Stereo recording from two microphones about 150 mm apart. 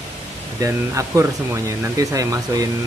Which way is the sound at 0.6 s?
20° right (ahead or behind).